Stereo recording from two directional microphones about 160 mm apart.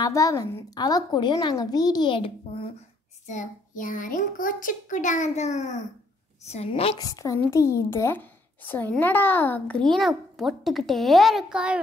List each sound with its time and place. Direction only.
0.0 s speech: 20° left (ahead or behind)
3.3 s a child's voice: 50° left (ahead or behind); by 7.1 s 35° left (ahead or behind)
7.1 s a child's voice: 20° left (ahead or behind); by 11.8 s 5° right (ahead or behind)